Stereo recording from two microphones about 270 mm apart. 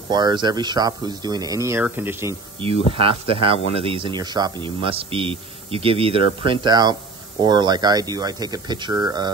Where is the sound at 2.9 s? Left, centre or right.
Centre.